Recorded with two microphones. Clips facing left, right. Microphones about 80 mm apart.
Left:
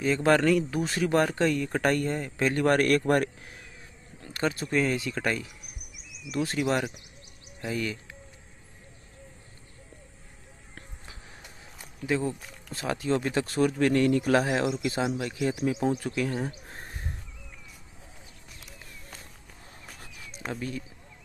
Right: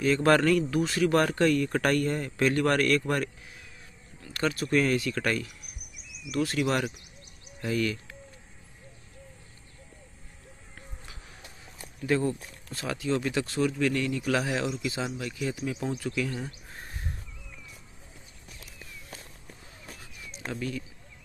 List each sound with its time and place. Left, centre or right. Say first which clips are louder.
0.0 s speech: even; centre
0.7 s speech: right 1 dB; left
4.2 s speech: even; left
12.1 s speech: right 2 dB; centre
12.7 s a man's voice: left 2 dB; left
20.0 s a sound: left 1 dB; left
20.5 s a man's voice: right 2 dB; left